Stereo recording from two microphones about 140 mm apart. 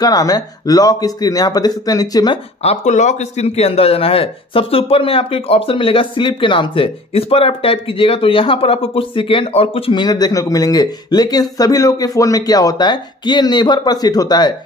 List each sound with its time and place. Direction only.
0.0 s a man's voice: 25° left (ahead or behind)
2.6 s a man's voice: 50° left (ahead or behind); by 14.5 s 30° left (ahead or behind)